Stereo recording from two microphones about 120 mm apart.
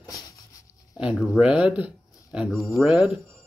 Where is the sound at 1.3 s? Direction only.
10° right (ahead or behind).